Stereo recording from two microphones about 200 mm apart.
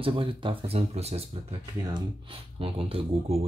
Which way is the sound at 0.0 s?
25° right (ahead or behind).